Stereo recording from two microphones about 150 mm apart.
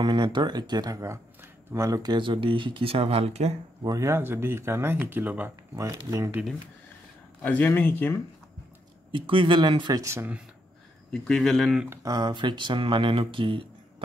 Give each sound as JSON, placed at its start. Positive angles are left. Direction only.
{"t": 0.0, "sound": "speech", "side_deg": -30}
{"t": 3.8, "sound": "speech", "side_deg": -20}
{"t": 5.8, "sound": "speech", "side_deg": -25}
{"t": 7.4, "sound": "speech", "side_deg": 10}
{"t": 9.1, "sound": "speech", "side_deg": -35}
{"t": 10.0, "sound": "speech", "side_deg": -20}
{"t": 11.1, "sound": "speech", "side_deg": 5}
{"t": 11.9, "sound": "speech", "side_deg": -25}